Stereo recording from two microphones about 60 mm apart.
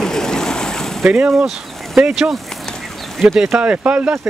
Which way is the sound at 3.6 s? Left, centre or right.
Centre.